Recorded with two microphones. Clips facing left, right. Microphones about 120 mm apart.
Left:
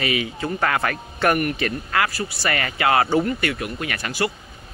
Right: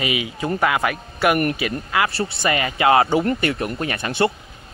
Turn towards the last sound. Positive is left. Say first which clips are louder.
# right 4 dB
turn(degrees=-25)  # may be behind; listen again after turning